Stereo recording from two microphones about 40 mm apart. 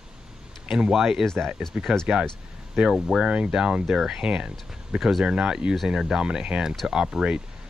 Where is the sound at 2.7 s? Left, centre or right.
Centre.